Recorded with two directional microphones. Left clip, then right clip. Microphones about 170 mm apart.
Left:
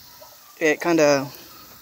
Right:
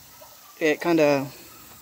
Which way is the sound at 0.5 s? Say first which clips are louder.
Left 2 dB; 5° left (ahead or behind).